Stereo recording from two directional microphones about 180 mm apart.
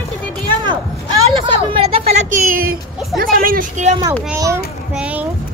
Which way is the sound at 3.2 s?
55° right (ahead or behind).